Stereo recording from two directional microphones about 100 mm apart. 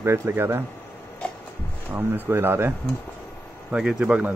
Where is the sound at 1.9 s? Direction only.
20° right (ahead or behind).